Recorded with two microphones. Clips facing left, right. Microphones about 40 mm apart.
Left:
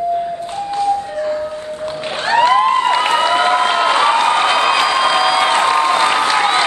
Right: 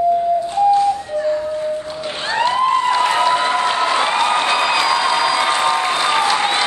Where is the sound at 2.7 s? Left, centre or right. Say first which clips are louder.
Left 2 dB; left.